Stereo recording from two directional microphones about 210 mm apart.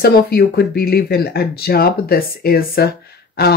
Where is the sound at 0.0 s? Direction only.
50° left (ahead or behind).